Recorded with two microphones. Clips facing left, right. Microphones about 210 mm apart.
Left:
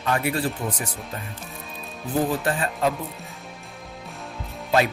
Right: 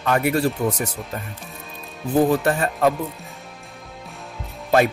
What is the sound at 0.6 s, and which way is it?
Speech, 55° right (ahead or behind).